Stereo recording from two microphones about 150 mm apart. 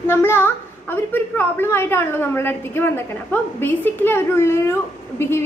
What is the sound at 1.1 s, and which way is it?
A woman's voice, 15° left (ahead or behind).